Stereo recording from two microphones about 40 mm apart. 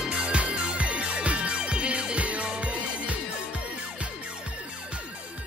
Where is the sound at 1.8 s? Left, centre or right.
Right.